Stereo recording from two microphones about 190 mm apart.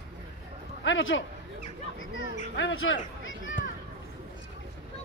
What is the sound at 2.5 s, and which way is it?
Speech, 75° left (ahead or behind).